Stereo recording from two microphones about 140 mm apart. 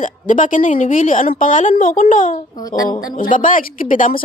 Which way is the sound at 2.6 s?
25° left (ahead or behind).